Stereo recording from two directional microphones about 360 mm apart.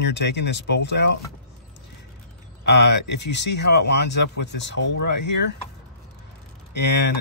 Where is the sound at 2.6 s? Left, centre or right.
Left.